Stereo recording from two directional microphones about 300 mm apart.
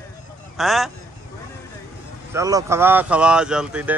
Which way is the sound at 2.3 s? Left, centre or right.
Centre.